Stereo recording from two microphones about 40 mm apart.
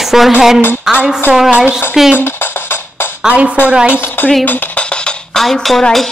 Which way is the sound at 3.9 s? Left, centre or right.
Left.